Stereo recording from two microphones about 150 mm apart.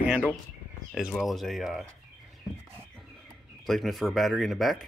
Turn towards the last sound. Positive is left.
turn(degrees=0)  # may be behind; listen again after turning